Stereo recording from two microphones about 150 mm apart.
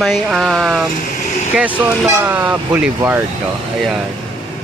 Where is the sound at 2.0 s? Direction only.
10° right (ahead or behind).